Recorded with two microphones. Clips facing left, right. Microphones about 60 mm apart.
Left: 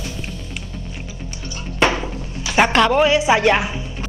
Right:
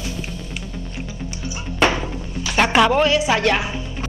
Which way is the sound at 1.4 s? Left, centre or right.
Centre.